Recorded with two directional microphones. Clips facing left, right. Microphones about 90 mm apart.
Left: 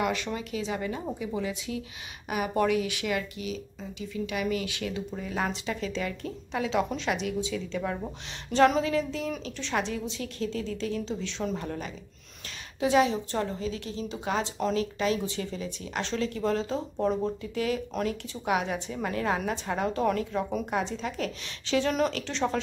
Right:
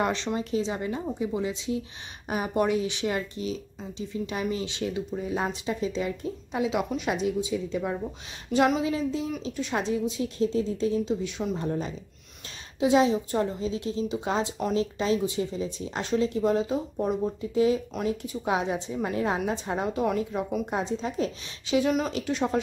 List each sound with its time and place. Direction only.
0.0 s a woman's voice: 30° right (ahead or behind)
8.5 s a woman's voice: 5° right (ahead or behind)
9.8 s a woman's voice: 20° right (ahead or behind)
11.6 s a woman's voice: 25° right (ahead or behind)